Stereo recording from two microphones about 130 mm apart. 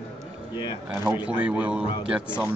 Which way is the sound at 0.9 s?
15° right (ahead or behind).